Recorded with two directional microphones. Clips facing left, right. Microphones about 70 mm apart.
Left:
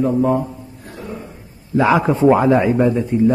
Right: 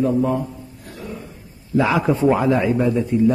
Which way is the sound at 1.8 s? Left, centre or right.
Left.